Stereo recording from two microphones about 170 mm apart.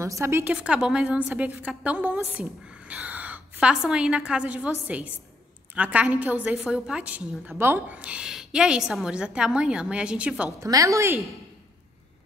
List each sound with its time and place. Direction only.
0.0 s a woman's voice: 15° right (ahead or behind)
10.6 s a woman's voice: 20° right (ahead or behind)